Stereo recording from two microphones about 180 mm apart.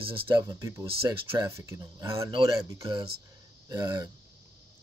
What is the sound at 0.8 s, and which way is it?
Speech, 30° right (ahead or behind).